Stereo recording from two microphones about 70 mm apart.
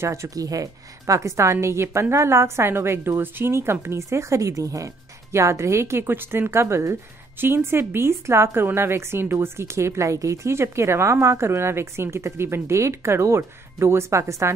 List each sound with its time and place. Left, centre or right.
0.0 s a woman's voice: right